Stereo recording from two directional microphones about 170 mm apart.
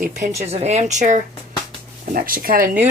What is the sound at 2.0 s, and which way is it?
Speech, 55° right (ahead or behind).